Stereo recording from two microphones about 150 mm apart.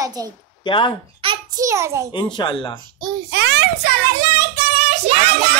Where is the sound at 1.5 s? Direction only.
20° right (ahead or behind).